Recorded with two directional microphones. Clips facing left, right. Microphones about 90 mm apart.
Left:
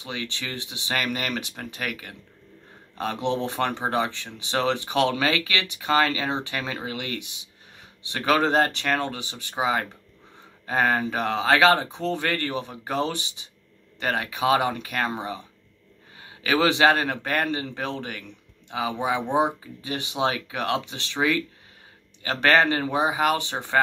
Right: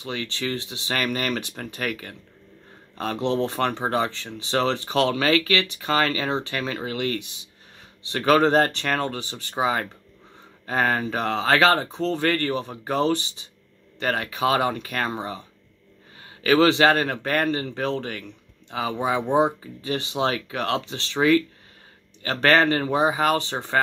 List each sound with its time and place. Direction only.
0.0 s speech: 20° left (ahead or behind)